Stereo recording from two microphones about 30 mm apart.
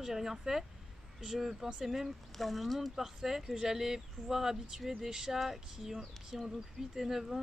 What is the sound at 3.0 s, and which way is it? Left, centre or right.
Speech, centre.